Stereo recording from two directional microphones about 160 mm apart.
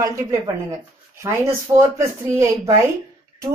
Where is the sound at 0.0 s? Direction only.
20° right (ahead or behind).